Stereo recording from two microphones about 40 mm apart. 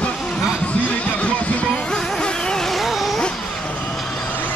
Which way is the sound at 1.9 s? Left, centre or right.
Left.